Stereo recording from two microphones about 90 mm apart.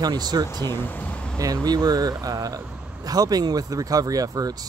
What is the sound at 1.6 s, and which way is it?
Speech, 45° right (ahead or behind).